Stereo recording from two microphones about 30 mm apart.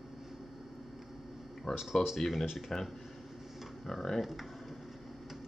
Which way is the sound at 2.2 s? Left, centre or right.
Centre.